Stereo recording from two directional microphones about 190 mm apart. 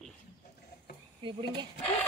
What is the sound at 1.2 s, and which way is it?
Speech, 25° right (ahead or behind).